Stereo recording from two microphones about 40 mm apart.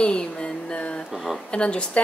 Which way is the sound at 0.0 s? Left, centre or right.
Left.